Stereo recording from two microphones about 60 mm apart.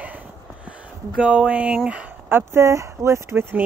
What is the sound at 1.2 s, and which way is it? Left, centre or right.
Speech, centre.